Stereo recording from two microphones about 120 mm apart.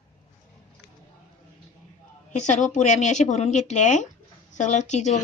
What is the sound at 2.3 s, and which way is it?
Speech, 90° left.